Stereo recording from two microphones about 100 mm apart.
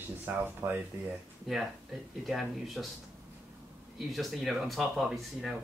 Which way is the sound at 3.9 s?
Centre (ahead or behind).